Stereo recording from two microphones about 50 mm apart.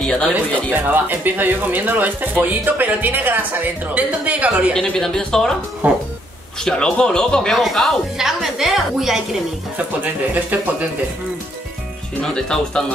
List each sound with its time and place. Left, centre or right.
0.0 s speech: left
0.7 s speech: right
4.9 s a man's voice: centre
5.8 s speech: right
6.6 s a man's voice: centre
8.2 s a woman's voice: centre
10.3 s speech: right
12.2 s a man's voice: centre